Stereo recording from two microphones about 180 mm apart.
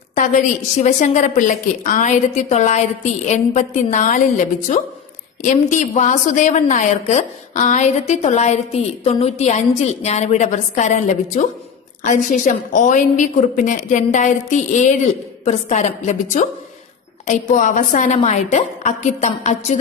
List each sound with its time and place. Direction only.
0.1 s a woman's voice: 40° left (ahead or behind)
12.1 s a woman's voice: 45° left (ahead or behind)
17.3 s a woman's voice: 45° left (ahead or behind)